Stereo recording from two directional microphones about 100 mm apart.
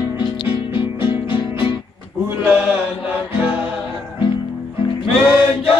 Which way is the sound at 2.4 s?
15° right (ahead or behind).